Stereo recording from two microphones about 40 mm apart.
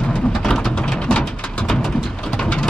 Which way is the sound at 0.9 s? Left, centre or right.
Left.